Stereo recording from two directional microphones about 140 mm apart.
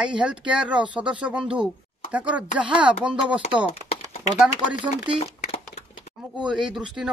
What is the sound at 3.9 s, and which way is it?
Typing, 90° left.